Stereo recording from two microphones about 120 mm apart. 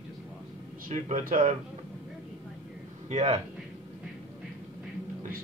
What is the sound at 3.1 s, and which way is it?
Speech, 70° right (ahead or behind).